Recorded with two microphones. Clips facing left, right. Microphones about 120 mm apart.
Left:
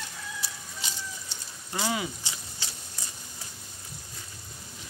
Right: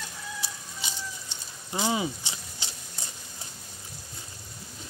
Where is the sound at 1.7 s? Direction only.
20° right (ahead or behind).